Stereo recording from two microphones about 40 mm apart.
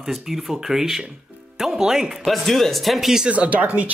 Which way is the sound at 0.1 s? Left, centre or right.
Centre.